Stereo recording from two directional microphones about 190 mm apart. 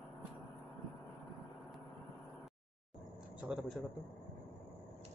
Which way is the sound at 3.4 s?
Centre (ahead or behind).